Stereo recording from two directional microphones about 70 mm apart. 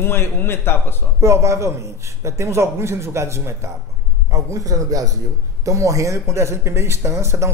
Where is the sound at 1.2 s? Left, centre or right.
Right.